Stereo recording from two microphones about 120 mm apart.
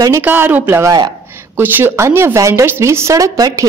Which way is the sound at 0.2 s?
15° right (ahead or behind).